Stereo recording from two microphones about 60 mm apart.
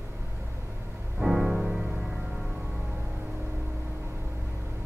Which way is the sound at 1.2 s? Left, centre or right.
Centre.